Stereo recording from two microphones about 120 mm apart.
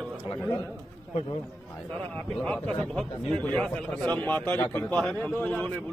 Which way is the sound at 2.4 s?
5° left (ahead or behind).